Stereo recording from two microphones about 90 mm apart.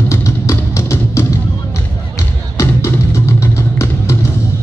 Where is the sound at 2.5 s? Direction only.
30° left (ahead or behind).